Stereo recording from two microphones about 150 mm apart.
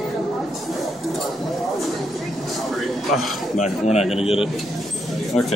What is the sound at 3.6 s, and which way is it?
Speech, 45° left (ahead or behind).